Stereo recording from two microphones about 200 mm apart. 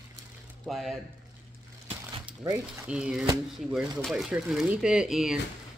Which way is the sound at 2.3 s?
5° right (ahead or behind).